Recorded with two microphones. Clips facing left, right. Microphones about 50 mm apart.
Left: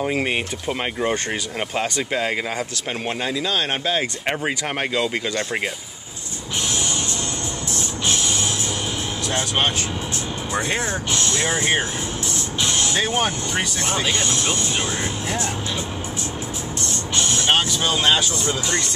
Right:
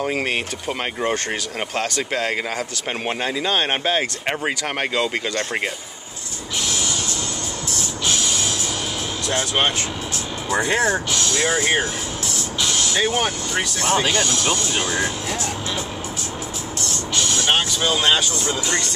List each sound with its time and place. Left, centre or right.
0.0 s speech: centre
3.1 s speech: centre
4.3 s speech: centre
11.1 s speech: left
12.6 s vehicle: left
13.8 s speech: right
14.1 s speech: left
16.8 s music: left
17.8 s speech: centre